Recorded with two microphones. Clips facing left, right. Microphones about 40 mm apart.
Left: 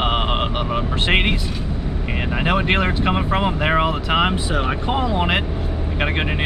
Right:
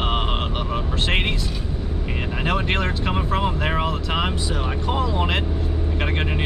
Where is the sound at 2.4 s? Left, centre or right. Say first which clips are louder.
Left 4 dB; centre.